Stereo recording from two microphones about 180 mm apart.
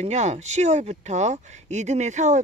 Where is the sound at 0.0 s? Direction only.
40° right (ahead or behind).